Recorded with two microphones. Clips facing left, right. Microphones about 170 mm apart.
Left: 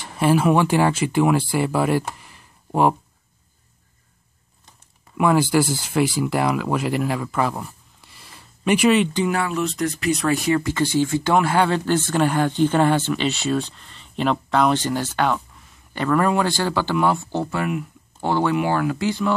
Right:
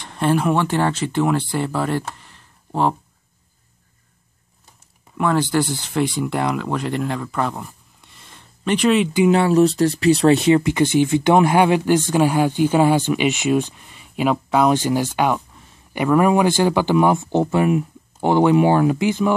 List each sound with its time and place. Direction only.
0.0 s speech: 5° left (ahead or behind)
5.1 s speech: 10° left (ahead or behind)
9.3 s speech: 30° right (ahead or behind)